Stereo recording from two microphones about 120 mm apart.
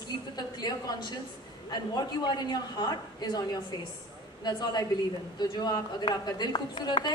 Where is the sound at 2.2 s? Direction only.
35° left (ahead or behind).